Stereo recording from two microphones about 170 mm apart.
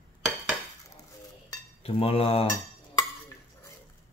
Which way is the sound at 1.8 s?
35° left (ahead or behind).